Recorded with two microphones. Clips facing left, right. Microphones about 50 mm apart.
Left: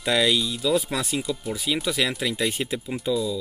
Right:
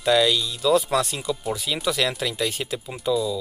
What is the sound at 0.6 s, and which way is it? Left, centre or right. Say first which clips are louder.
Speech: right 4 dB; centre.